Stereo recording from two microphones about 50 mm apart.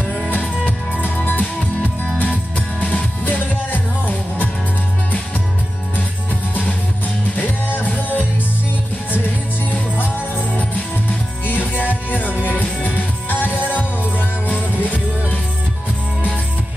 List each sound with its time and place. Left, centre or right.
1.0 s music: left
7.3 s music: left
10.1 s music: left